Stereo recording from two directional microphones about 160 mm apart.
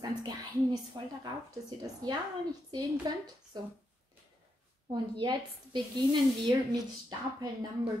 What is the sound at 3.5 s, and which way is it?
Speech, 25° right (ahead or behind).